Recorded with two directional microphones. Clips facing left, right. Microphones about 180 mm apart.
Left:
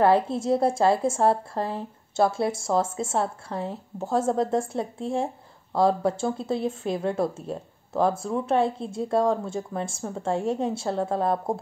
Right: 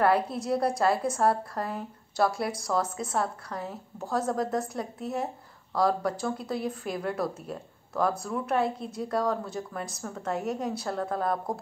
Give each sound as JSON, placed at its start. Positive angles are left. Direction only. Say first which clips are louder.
{"t": 0.0, "sound": "speech", "louder": "left 4 dB", "side_deg": 25}